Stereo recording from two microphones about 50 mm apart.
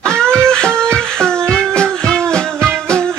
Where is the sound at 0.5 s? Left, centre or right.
Centre.